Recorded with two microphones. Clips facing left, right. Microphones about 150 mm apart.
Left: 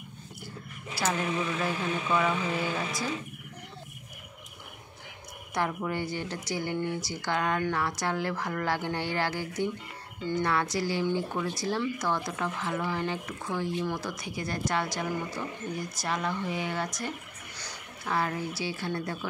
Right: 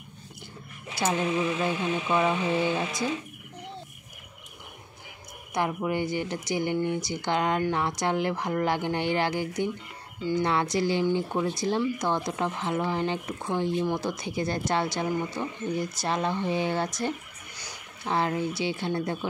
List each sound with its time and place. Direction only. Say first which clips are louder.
1.6 s speech: right 3 dB; 25° right (ahead or behind)
5.5 s speech: right 3 dB; 15° right (ahead or behind)